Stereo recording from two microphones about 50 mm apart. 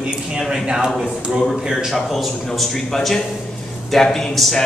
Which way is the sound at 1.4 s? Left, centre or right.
Centre.